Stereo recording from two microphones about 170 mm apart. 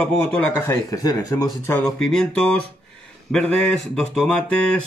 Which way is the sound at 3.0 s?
5° left (ahead or behind).